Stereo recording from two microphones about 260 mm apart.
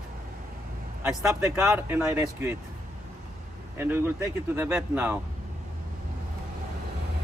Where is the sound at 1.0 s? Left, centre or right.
Centre.